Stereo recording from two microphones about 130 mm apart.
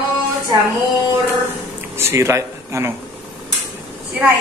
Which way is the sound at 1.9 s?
20° right (ahead or behind).